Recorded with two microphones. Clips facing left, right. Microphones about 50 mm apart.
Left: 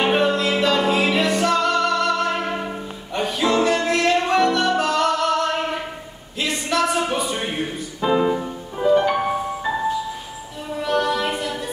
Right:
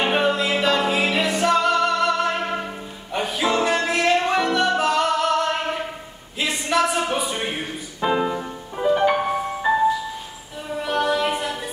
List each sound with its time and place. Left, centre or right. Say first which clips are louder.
0.0 s music: left 2 dB; centre
9.6 s music: right 6 dB; centre